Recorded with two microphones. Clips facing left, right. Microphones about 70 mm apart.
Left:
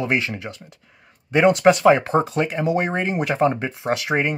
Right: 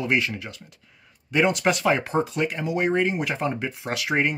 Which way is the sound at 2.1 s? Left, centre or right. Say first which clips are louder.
Left 4 dB; left.